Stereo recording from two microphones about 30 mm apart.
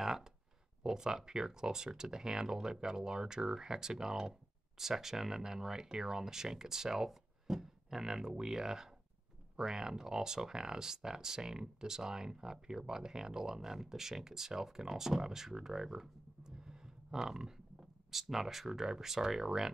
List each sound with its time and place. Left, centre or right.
0.0 s a sound: centre
0.8 s speech: right
18.3 s speech: centre